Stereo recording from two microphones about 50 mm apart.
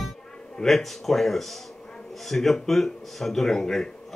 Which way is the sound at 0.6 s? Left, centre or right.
Centre.